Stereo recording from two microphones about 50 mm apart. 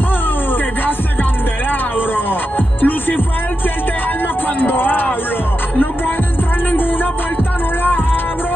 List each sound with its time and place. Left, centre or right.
1.7 s music: left
4.6 s a sound: left
6.7 s music: left